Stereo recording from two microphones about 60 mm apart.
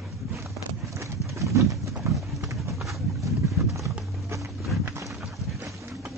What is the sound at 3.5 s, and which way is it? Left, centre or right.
Clip-clop, right.